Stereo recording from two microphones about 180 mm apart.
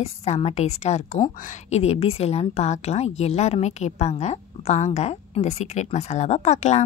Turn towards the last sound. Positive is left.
turn(degrees=40)  # may be behind; listen again after turning